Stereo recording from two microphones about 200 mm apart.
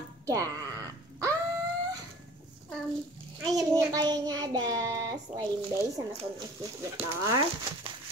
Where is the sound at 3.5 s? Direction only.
20° right (ahead or behind).